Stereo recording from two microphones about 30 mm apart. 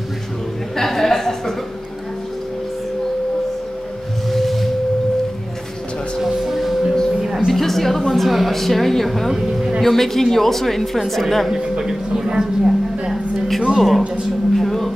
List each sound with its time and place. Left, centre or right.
0.7 s music: centre
4.3 s tuning fork: centre
6.2 s music: centre
7.3 s a woman's voice: centre
11.8 s a woman's voice: centre
13.7 s speech: centre
14.5 s a sound: centre